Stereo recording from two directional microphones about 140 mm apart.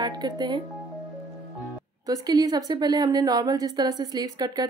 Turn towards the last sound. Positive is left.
turn(degrees=-30)  # may be behind; listen again after turning